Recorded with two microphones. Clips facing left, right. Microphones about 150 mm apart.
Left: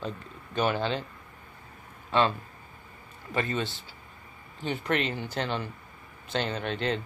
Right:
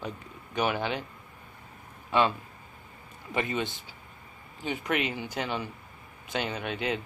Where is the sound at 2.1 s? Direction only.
10° right (ahead or behind).